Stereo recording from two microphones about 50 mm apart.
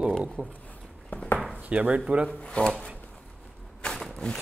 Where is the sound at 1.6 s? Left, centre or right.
Right.